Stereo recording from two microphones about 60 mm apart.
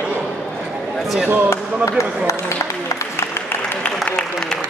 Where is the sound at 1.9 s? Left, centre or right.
Left.